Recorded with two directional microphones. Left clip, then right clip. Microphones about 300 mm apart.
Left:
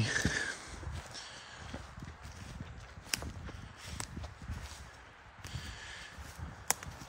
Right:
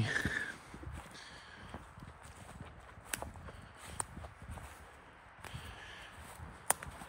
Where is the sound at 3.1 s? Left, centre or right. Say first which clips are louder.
Left 4 dB; centre.